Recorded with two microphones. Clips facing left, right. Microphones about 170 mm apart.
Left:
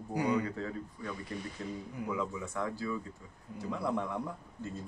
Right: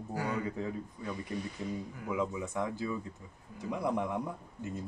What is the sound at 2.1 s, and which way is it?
Speech, 20° right (ahead or behind).